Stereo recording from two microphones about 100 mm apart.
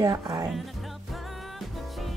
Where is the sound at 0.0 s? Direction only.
35° right (ahead or behind).